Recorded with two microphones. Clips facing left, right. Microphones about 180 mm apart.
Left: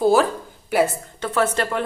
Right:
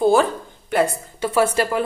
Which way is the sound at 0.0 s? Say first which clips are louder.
Right 1 dB; centre (ahead or behind).